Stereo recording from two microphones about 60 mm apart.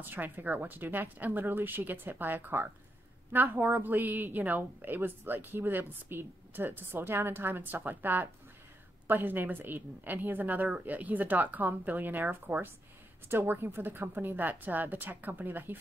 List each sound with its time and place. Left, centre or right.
0.0 s a woman's voice: right